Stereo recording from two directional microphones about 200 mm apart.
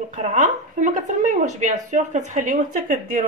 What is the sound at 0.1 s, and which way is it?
Speech, 35° right (ahead or behind).